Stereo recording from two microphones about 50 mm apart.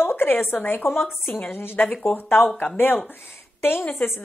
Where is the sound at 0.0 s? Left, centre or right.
Left.